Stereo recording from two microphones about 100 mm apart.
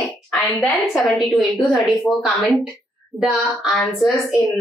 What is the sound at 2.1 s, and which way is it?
Speech, 20° left (ahead or behind).